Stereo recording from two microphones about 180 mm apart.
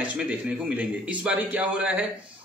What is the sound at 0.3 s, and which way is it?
Speech, 10° right (ahead or behind).